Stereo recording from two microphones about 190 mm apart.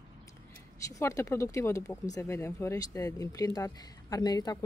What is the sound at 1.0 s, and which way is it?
Speech, 15° left (ahead or behind).